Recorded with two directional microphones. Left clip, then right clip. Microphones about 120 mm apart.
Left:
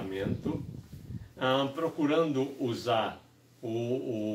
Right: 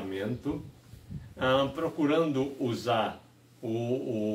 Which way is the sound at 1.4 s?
20° right (ahead or behind).